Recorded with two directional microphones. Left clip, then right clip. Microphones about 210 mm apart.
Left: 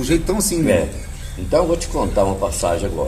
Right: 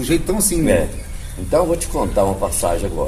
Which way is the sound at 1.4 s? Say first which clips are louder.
Even; 5° right (ahead or behind).